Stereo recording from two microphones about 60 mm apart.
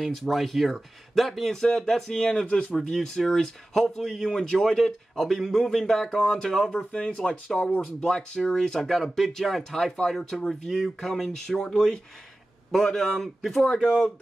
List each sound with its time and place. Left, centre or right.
0.0 s speech: centre
2.4 s speech: centre
2.7 s speech: centre
6.8 s speech: centre